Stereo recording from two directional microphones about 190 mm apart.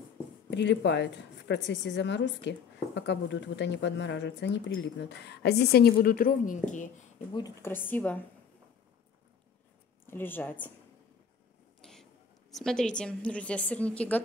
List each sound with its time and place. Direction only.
0.5 s a woman's voice: 65° left (ahead or behind); by 6.9 s 40° left (ahead or behind)
7.3 s speech: 15° left (ahead or behind)
10.0 s speech: 10° left (ahead or behind)
11.8 s a woman's voice: centre (ahead or behind)